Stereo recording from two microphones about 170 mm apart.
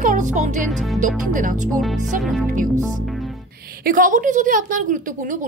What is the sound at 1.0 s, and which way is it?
Speech, 50° right (ahead or behind).